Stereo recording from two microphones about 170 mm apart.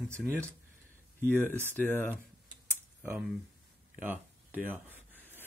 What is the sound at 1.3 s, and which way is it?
Speech, 10° left (ahead or behind).